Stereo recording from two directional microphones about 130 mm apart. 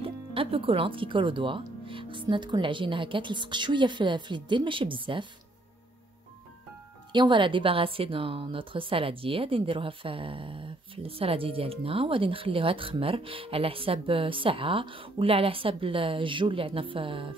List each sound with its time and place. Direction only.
0.0 s speech: 45° right (ahead or behind)
7.1 s speech: 35° right (ahead or behind)